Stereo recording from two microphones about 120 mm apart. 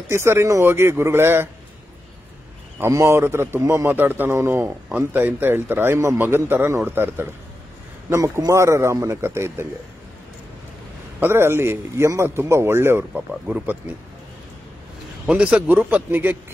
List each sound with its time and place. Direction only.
0.1 s speech: 20° right (ahead or behind)
2.8 s a man's voice: 25° right (ahead or behind)
11.1 s speech: 20° right (ahead or behind)
13.3 s a man's voice: 5° right (ahead or behind)
15.2 s a man's voice: 10° right (ahead or behind)